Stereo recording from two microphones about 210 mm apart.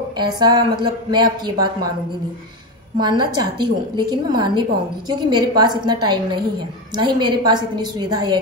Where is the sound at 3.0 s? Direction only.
20° right (ahead or behind).